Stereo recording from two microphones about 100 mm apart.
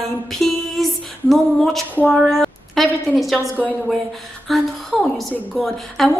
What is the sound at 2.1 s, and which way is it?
A woman's voice, centre (ahead or behind).